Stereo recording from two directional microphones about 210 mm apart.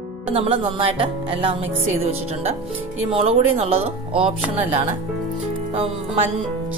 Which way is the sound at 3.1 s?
30° right (ahead or behind).